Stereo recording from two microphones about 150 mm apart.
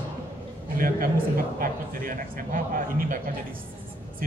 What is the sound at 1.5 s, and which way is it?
A man's voice, 75° right (ahead or behind).